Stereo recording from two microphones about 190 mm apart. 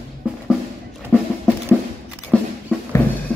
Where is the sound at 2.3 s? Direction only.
5° left (ahead or behind).